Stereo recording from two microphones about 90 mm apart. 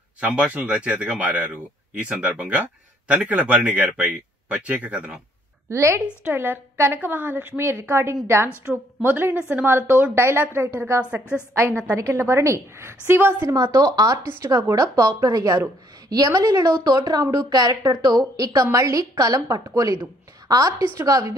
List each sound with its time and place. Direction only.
0.2 s speech: 15° right (ahead or behind)
5.7 s a woman's voice: 30° right (ahead or behind)
13.5 s a woman's voice: 40° right (ahead or behind)